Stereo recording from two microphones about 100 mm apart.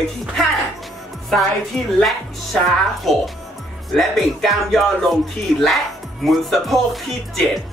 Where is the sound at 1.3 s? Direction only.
Centre (ahead or behind).